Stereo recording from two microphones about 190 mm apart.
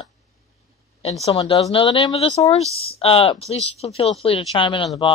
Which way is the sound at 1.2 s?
30° left (ahead or behind).